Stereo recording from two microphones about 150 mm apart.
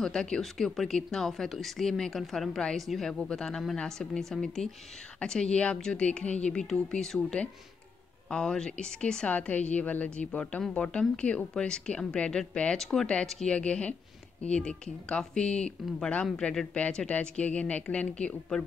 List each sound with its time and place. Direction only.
0.0 s a woman's voice: 5° left (ahead or behind)